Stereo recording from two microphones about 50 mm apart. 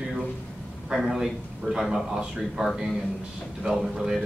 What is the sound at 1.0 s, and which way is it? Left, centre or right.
Speech, centre.